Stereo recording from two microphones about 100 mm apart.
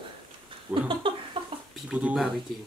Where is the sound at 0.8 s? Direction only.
60° right (ahead or behind).